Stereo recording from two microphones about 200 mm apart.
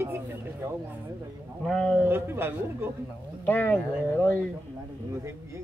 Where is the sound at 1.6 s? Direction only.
5° left (ahead or behind).